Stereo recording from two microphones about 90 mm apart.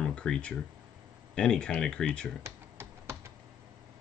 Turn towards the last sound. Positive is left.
turn(degrees=-30)  # may be behind; listen again after turning